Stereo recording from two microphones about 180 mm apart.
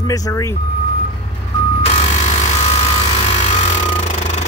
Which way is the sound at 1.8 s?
35° left (ahead or behind).